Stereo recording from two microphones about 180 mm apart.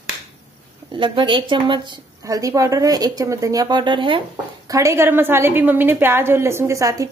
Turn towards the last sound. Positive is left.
turn(degrees=-20)  # may be behind; listen again after turning